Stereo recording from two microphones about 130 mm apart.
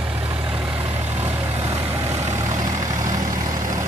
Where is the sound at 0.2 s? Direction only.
45° right (ahead or behind).